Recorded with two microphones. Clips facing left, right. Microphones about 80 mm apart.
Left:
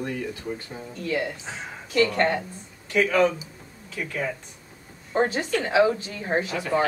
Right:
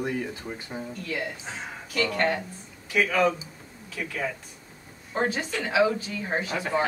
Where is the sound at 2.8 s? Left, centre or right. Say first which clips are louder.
Left 2 dB; centre.